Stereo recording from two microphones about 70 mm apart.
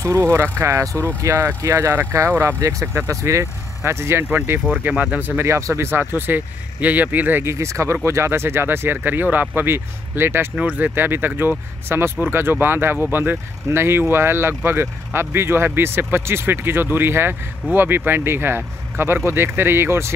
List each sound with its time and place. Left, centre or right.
0.0 s speech: right
1.6 s speech: right
4.8 s speech: centre
5.4 s speech: right
7.5 s speech: right
10.5 s speech: centre
11.0 s speech: right